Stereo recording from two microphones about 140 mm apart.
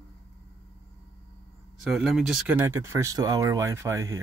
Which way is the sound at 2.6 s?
20° right (ahead or behind).